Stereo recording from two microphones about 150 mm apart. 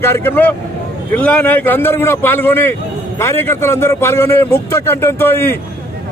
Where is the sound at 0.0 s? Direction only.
15° left (ahead or behind).